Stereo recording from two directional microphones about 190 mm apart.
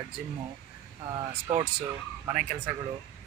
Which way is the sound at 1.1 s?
25° right (ahead or behind).